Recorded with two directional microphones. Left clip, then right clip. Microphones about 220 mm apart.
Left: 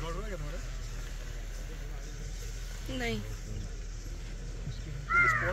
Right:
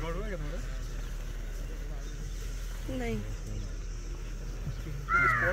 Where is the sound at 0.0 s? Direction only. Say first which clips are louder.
Right 2 dB; 25° right (ahead or behind).